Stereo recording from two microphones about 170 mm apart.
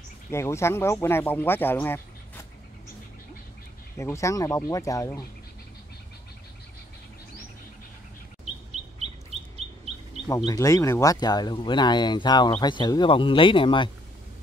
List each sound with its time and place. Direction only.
0.3 s speech: 15° left (ahead or behind)
4.0 s speech: 15° left (ahead or behind)
10.2 s speech: 20° left (ahead or behind)